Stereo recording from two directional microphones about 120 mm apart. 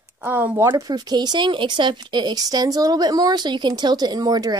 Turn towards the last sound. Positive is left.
turn(degrees=-35)  # may be behind; listen again after turning